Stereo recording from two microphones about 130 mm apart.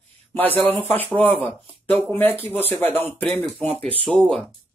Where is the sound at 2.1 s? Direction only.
15° left (ahead or behind).